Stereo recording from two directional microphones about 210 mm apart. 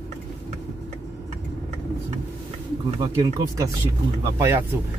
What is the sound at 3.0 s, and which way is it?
Speech, 15° right (ahead or behind).